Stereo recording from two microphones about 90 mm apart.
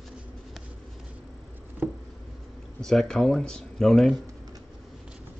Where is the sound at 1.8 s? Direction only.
20° right (ahead or behind).